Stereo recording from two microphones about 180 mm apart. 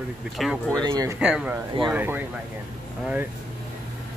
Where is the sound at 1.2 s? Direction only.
5° right (ahead or behind).